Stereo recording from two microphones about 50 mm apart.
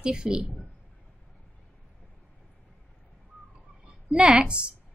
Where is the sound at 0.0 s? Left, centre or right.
Centre.